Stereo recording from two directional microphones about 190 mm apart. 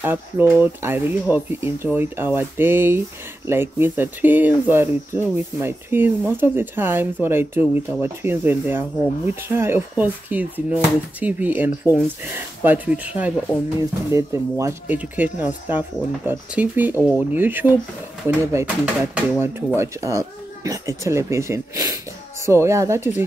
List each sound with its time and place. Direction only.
0.0 s speech: 10° right (ahead or behind)